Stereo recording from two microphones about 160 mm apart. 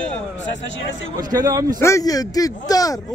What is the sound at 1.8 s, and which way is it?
A man's voice, 20° left (ahead or behind).